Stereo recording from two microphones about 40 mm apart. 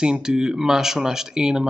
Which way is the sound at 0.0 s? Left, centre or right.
Right.